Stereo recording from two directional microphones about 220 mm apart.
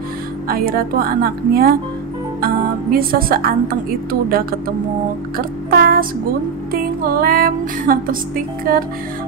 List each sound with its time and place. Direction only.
0.5 s speech: 40° right (ahead or behind)
5.4 s music: 45° right (ahead or behind)
8.7 s speech: 40° right (ahead or behind)